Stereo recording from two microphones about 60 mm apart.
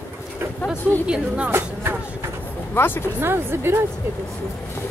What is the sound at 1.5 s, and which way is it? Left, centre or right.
Speech, right.